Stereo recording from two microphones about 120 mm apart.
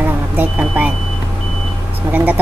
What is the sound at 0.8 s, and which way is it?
Speech, 15° right (ahead or behind).